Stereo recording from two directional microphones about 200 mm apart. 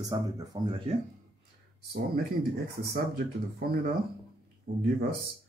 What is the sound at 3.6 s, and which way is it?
Speech, 50° right (ahead or behind).